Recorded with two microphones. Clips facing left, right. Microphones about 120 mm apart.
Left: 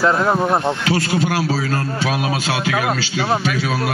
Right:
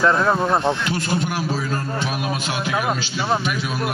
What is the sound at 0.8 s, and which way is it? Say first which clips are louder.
A man's voice: left 4 dB; 90° left.